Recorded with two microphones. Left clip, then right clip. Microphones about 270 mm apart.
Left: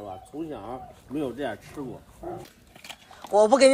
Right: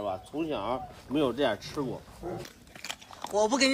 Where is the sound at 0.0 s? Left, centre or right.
Right.